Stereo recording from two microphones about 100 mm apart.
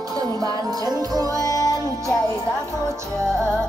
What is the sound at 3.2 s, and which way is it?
Music, 5° left (ahead or behind).